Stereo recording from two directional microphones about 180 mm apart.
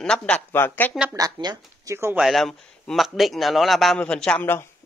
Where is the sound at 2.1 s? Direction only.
Centre (ahead or behind).